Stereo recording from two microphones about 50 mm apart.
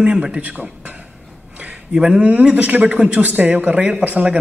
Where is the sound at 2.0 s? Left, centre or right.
Centre.